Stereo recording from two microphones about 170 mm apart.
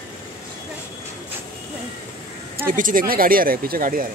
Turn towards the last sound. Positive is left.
turn(degrees=-55)  # may be behind; listen again after turning